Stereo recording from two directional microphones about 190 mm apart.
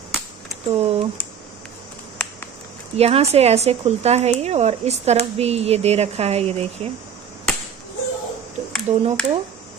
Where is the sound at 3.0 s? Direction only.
35° right (ahead or behind).